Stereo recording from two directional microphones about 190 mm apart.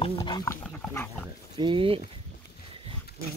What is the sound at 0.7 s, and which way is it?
Pig, 5° left (ahead or behind).